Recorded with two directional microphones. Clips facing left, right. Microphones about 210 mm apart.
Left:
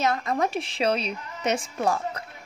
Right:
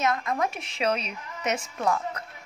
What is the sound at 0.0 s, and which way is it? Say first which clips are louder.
A woman's voice: left 2 dB; 30° left (ahead or behind).